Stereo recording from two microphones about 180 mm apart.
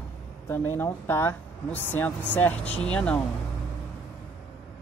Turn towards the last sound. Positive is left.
turn(degrees=5)  # may be behind; listen again after turning